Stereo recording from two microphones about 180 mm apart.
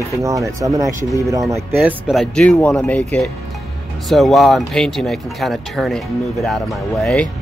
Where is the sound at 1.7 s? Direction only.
Centre (ahead or behind).